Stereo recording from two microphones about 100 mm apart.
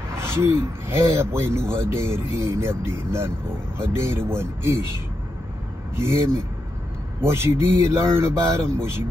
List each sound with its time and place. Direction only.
0.2 s speech: 25° right (ahead or behind)
5.9 s speech: 25° right (ahead or behind)